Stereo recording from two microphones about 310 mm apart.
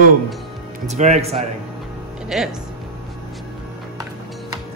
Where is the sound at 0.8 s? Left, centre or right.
Right.